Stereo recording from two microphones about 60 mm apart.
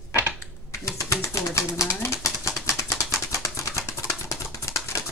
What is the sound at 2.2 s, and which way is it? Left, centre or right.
Bird, left.